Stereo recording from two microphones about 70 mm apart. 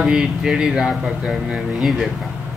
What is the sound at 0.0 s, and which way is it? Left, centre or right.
Speech, centre.